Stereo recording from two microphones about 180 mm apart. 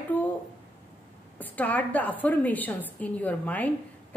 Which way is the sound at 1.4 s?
10° left (ahead or behind).